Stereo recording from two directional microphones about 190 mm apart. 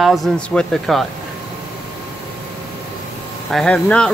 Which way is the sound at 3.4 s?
Centre (ahead or behind).